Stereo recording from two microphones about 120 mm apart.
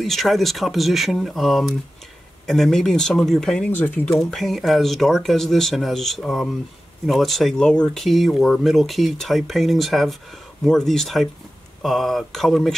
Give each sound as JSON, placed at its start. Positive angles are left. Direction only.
{"t": 0.0, "sound": "speech", "side_deg": 0}
{"t": 3.7, "sound": "speech", "side_deg": 15}
{"t": 4.2, "sound": "speech", "side_deg": 0}